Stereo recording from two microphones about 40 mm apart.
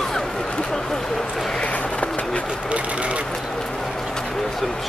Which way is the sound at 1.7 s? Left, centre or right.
Left.